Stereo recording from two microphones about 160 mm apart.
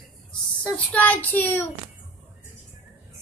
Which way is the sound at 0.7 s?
10° left (ahead or behind).